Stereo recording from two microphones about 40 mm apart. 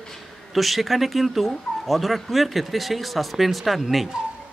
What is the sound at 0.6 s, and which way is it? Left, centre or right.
Speech, centre.